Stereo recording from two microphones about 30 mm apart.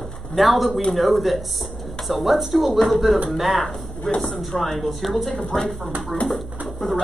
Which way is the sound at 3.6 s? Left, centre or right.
Centre.